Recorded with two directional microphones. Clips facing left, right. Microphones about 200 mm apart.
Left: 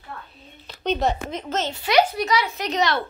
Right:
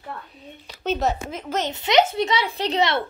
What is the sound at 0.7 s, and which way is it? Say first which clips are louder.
Speech: left 1 dB; 5° right (ahead or behind).